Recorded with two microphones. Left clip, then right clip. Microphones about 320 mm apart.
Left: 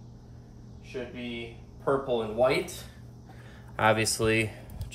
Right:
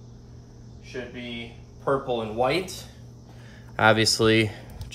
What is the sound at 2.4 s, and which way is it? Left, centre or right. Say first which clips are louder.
Speech: even; centre.